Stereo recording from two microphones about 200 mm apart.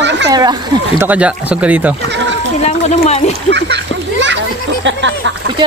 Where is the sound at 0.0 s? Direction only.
60° right (ahead or behind).